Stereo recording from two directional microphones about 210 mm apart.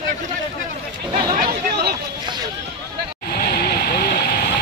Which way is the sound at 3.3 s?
50° left (ahead or behind).